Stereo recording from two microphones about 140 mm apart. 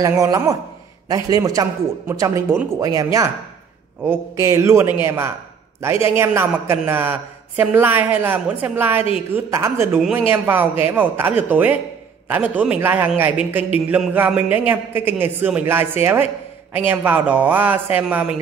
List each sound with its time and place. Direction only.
0.0 s a man's voice: 25° right (ahead or behind); by 18.3 s 5° right (ahead or behind)